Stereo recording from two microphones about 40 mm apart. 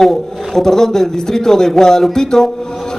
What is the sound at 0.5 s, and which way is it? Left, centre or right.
A man's voice, centre.